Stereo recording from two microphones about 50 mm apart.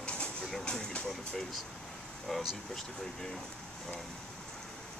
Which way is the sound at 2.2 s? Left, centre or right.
Centre.